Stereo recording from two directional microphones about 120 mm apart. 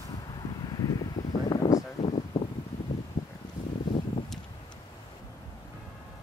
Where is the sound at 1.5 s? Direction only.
30° left (ahead or behind).